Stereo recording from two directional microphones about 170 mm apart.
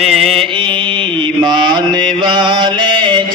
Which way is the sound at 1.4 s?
25° right (ahead or behind).